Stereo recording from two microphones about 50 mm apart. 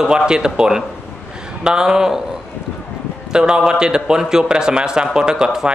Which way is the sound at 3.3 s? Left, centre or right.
Centre.